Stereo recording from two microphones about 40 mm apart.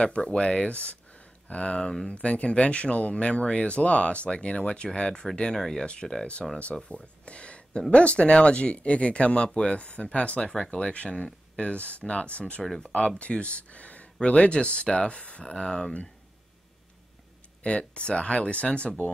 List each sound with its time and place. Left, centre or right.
0.0 s speech: left; by 5.9 s centre
5.9 s speech: left
6.4 s speech: centre
6.9 s speech: left
10.5 s speech: centre
10.8 s speech: left
12.6 s speech: centre
13.2 s speech: left
17.6 s speech: left